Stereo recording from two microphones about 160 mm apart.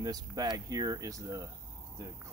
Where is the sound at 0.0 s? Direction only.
25° right (ahead or behind).